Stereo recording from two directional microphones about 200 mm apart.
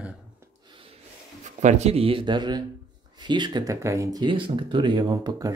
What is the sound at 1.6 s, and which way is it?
Speech, 35° right (ahead or behind).